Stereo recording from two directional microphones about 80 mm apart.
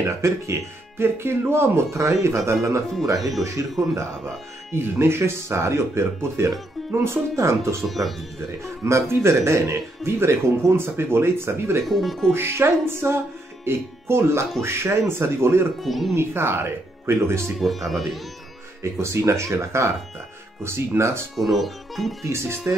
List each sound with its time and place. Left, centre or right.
0.0 s speech: right
3.2 s speech: centre
4.7 s speech: right
7.8 s speech: centre
8.6 s speech: right
11.9 s speech: centre
12.3 s speech: right
15.8 s speech: centre
16.2 s speech: right
17.6 s speech: centre
18.8 s speech: right
21.4 s speech: centre
22.2 s speech: right